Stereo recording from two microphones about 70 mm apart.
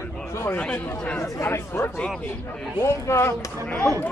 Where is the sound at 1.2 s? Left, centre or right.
Left.